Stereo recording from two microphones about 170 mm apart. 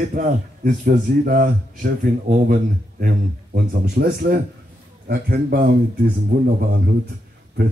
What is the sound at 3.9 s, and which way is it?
Speech, 65° right (ahead or behind).